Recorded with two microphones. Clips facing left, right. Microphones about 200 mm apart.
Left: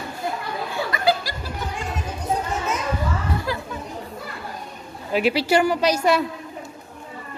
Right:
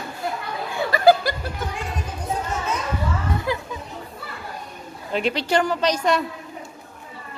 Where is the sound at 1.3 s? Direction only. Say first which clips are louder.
Right 7 dB; 55° right (ahead or behind).